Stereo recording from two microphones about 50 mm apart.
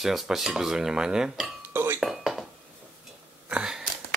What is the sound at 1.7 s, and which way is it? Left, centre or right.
Chink, right.